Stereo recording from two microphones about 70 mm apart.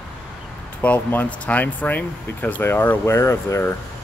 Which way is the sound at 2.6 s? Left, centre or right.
Left.